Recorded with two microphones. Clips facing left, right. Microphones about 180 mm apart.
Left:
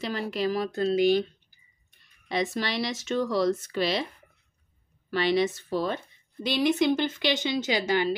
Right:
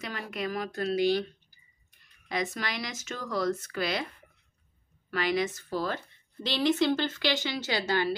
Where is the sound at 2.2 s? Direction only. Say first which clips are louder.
Left 4 dB; 30° left (ahead or behind).